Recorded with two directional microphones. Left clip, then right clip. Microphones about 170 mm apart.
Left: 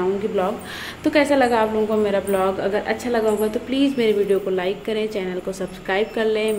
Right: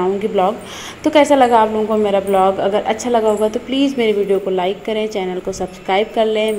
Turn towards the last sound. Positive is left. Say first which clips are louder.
# right 5 dB
turn(degrees=-10)  # may be behind; listen again after turning